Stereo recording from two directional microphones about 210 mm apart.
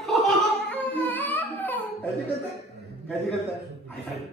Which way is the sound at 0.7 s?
10° left (ahead or behind).